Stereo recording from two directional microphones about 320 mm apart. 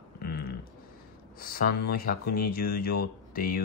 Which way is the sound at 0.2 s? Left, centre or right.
Left.